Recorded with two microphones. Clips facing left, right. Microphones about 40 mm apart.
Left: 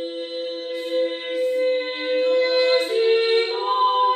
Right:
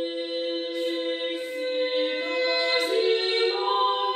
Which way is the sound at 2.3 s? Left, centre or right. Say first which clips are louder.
Left 6 dB; left.